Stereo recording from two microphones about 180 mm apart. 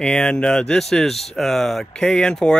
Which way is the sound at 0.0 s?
5° left (ahead or behind).